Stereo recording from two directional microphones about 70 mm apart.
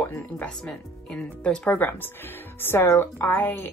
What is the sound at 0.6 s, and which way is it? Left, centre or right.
Speech, centre.